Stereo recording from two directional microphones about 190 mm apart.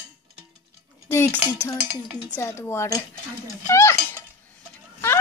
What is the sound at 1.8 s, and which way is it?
Dishes, 5° right (ahead or behind).